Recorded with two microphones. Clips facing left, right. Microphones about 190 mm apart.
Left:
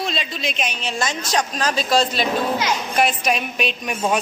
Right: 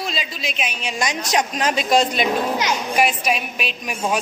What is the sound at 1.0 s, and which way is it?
A woman's voice, 15° right (ahead or behind).